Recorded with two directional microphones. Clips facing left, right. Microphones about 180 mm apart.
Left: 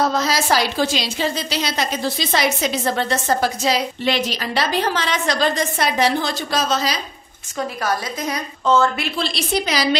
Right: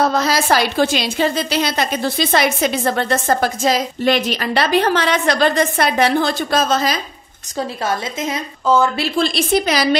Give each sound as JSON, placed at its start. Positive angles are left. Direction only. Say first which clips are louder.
{"t": 0.0, "sound": "a woman's voice", "louder": "right 3 dB", "side_deg": -60}
{"t": 7.5, "sound": "a woman's voice", "louder": "right 2 dB", "side_deg": -25}
{"t": 9.2, "sound": "a woman's voice", "louder": "right 6 dB", "side_deg": -50}